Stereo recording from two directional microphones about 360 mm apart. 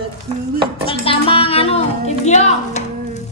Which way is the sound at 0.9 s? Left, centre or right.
Centre.